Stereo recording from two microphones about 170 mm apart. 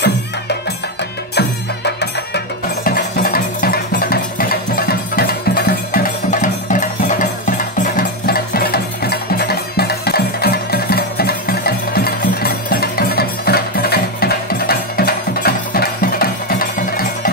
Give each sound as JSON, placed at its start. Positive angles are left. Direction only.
{"t": 2.0, "sound": "music", "side_deg": 70}